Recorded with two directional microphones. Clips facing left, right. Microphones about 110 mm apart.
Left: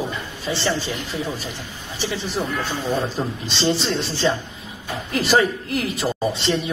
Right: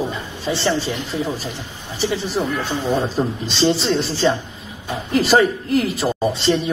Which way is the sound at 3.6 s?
Centre (ahead or behind).